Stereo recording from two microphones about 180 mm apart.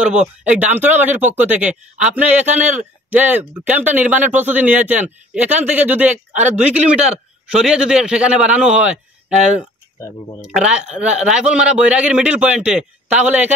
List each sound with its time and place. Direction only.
0.1 s speech: 5° right (ahead or behind)
6.3 s speech: 40° right (ahead or behind)
7.5 s a man's voice: 5° right (ahead or behind)